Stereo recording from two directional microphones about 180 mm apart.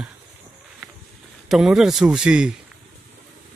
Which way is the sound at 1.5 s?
Centre (ahead or behind).